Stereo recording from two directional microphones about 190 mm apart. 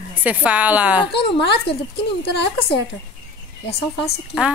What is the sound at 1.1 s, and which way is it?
A woman's voice, 60° left (ahead or behind).